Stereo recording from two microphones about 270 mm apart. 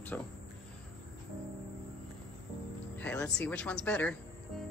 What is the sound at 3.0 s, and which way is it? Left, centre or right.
Speech, centre.